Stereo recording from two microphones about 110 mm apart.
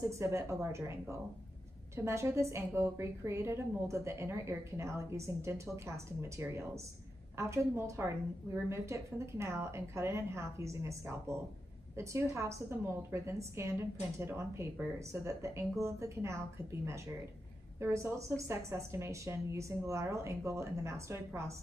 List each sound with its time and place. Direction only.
0.2 s a woman's voice: 25° right (ahead or behind)
2.0 s a woman's voice: 25° right (ahead or behind)